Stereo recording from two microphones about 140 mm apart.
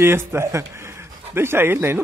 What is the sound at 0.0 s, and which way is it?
A man's voice, 15° right (ahead or behind).